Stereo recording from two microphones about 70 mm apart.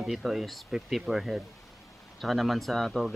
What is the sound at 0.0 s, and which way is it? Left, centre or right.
Speech, centre.